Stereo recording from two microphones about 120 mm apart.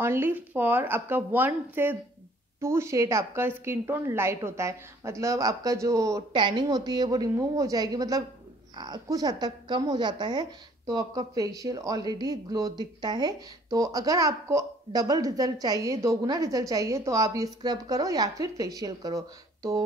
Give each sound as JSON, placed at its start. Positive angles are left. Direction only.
{"t": 0.0, "sound": "speech", "side_deg": -20}
{"t": 6.3, "sound": "a woman's voice", "side_deg": -40}